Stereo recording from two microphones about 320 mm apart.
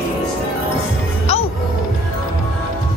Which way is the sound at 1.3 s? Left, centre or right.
Centre.